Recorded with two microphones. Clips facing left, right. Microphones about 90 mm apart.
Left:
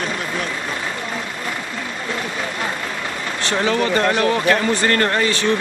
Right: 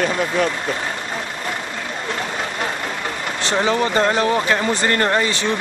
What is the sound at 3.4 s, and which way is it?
Speech, 25° right (ahead or behind).